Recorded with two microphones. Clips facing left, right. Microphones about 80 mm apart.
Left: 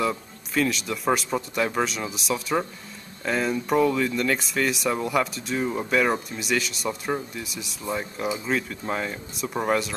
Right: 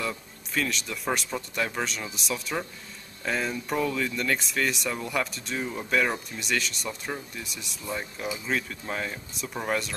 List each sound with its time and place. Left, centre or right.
0.6 s speech: centre